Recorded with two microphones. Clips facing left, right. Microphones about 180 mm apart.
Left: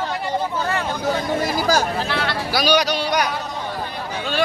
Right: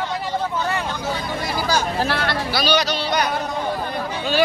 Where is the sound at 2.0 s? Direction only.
50° right (ahead or behind).